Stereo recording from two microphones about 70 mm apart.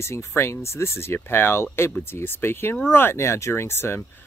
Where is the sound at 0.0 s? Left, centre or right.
Left.